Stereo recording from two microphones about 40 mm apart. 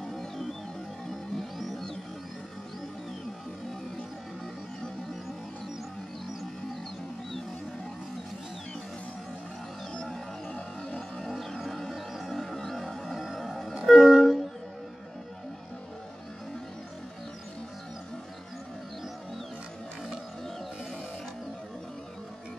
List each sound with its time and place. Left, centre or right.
0.0 s music: centre
10.0 s music: centre
11.2 s a sound: centre
13.8 s train: centre